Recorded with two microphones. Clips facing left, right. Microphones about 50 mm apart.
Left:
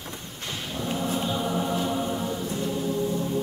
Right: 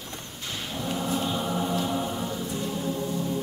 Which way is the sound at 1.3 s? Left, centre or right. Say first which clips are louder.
Left 1 dB; centre.